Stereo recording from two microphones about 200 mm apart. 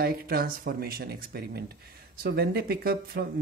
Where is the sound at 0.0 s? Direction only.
50° right (ahead or behind).